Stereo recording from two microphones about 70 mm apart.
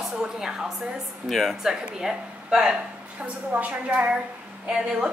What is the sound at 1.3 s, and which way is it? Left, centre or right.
A woman's voice, centre.